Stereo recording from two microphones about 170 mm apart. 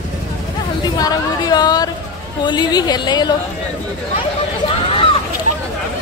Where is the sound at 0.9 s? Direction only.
25° left (ahead or behind).